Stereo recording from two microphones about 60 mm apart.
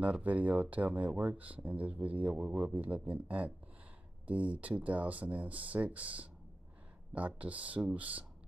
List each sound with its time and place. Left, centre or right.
0.0 s speech: right